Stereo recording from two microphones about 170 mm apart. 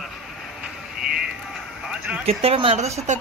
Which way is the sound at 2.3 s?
35° right (ahead or behind).